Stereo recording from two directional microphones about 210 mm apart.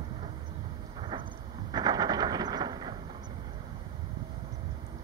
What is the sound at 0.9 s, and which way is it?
Vehicle, 20° right (ahead or behind).